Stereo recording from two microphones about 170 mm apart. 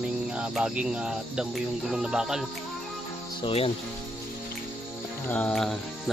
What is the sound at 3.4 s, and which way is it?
Speech, 35° left (ahead or behind).